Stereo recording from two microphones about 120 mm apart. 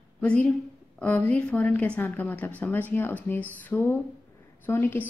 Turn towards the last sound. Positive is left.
turn(degrees=15)  # may be behind; listen again after turning